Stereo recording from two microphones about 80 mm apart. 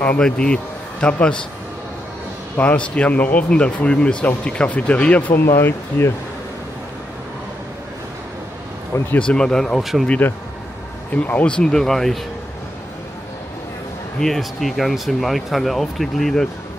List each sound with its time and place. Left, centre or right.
0.0 s speech: centre
2.5 s speech: centre
5.3 s speech: left
8.9 s speech: left
9.3 s speech: centre
10.0 s speech: centre
14.2 s speech: centre